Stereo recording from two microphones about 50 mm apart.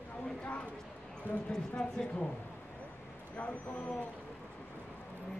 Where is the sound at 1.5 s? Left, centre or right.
Centre.